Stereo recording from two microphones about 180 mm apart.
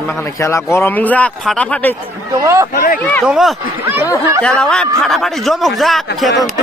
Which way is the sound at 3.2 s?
5° right (ahead or behind).